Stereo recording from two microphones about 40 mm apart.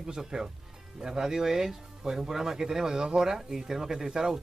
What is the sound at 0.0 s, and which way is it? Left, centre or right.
Speech, centre.